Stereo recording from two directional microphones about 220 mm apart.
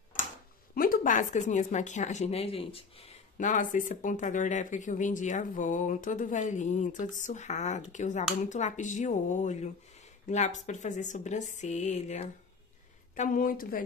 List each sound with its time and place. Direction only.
0.7 s speech: 40° left (ahead or behind)